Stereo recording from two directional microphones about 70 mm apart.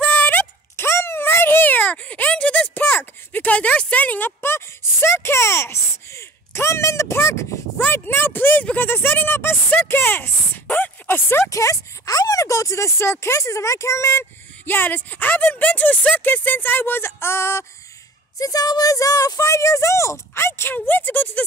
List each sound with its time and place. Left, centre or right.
0.1 s a sound: left
0.7 s a sound: left; by 2.7 s centre
2.7 s speech: left
7.8 s speech: left
11.5 s speech: left
14.7 s speech: left
18.4 s speech: left